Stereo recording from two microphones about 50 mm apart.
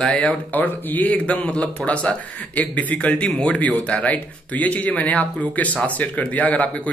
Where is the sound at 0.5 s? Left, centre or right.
Left.